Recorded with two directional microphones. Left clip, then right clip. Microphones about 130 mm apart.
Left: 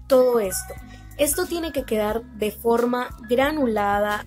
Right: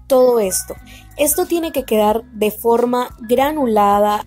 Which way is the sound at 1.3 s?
25° right (ahead or behind).